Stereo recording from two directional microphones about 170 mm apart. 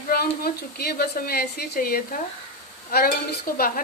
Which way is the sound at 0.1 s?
65° left (ahead or behind).